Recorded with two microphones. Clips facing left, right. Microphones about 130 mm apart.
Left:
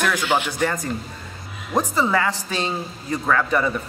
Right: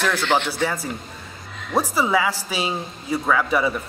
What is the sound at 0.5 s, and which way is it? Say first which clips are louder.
Speech: left 1 dB; 5° right (ahead or behind).